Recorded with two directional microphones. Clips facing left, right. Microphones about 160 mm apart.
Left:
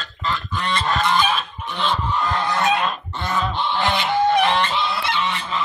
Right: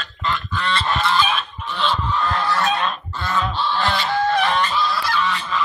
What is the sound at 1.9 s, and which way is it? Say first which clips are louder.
Goose: even; 15° left (ahead or behind).